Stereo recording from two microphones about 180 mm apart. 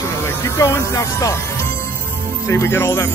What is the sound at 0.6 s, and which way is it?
Speech, 15° left (ahead or behind).